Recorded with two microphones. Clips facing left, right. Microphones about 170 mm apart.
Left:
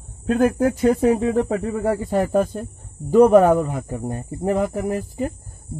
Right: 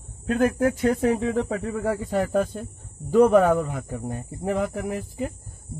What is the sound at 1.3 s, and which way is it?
Speech, 40° left (ahead or behind).